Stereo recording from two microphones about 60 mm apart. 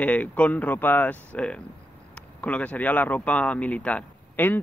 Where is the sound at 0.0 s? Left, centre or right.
Left.